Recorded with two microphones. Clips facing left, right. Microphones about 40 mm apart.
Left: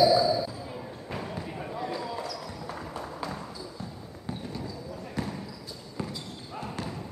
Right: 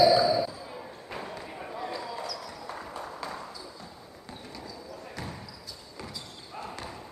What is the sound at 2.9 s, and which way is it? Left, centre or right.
Run, centre.